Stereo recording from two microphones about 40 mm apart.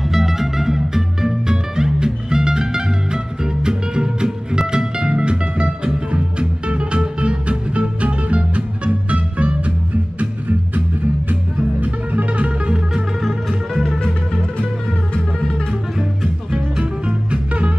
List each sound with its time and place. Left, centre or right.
0.1 s music: centre; by 9.6 s right
11.8 s music: right
12.4 s music: right
16.5 s music: right